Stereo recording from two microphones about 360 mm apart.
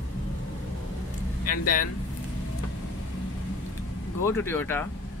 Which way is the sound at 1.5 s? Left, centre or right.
Left.